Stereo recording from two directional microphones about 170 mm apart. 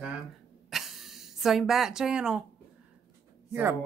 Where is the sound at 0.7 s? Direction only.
Centre (ahead or behind).